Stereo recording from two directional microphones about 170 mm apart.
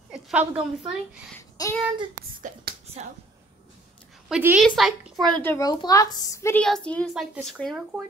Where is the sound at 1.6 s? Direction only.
20° left (ahead or behind).